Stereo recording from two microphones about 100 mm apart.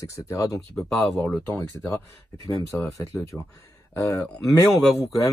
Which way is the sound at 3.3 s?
Centre (ahead or behind).